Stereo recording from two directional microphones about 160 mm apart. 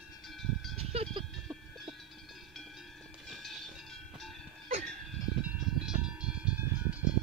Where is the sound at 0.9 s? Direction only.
40° right (ahead or behind).